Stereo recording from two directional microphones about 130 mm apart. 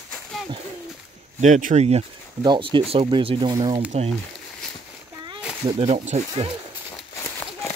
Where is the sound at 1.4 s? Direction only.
80° right.